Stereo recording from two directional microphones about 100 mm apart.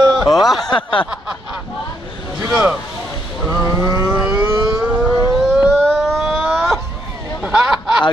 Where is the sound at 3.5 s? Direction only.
30° right (ahead or behind).